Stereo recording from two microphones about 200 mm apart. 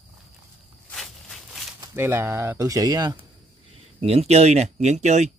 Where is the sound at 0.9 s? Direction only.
5° left (ahead or behind).